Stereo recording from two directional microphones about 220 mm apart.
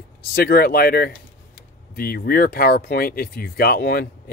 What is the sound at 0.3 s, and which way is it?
Speech, 45° left (ahead or behind).